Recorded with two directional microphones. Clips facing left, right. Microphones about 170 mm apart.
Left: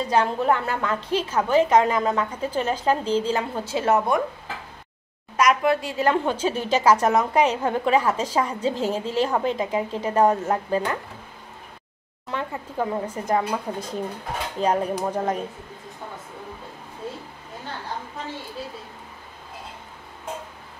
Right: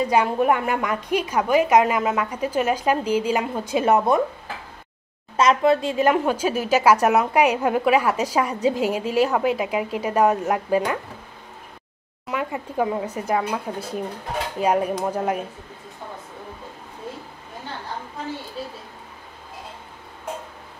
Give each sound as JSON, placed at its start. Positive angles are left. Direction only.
{"t": 0.0, "sound": "a woman's voice", "side_deg": -10}
{"t": 5.4, "sound": "speech", "side_deg": -25}
{"t": 6.2, "sound": "a woman's voice", "side_deg": -10}
{"t": 12.3, "sound": "a woman's voice", "side_deg": -10}